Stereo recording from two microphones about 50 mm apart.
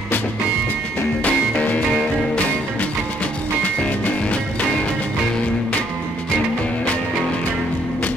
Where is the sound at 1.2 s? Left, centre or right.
Left.